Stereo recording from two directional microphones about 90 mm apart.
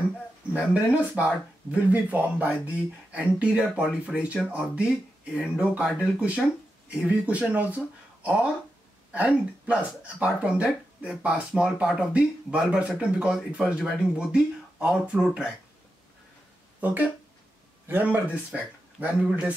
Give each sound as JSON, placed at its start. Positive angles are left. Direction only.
{"t": 0.5, "sound": "speech", "side_deg": -15}
{"t": 17.8, "sound": "speech", "side_deg": -20}